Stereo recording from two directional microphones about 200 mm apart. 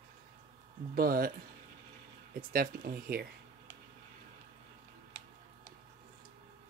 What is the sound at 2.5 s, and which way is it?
Speech, 45° right (ahead or behind).